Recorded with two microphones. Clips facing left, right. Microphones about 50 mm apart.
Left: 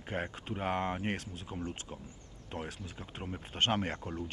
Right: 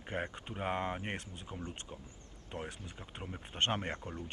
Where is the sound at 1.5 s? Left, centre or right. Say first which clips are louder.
Left 5 dB; left.